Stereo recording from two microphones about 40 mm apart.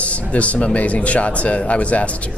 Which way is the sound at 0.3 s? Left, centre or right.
Left.